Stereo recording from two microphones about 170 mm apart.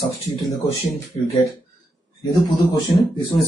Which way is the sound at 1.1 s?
35° left (ahead or behind).